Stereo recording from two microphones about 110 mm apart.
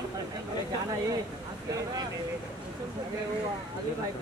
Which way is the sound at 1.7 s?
35° right (ahead or behind).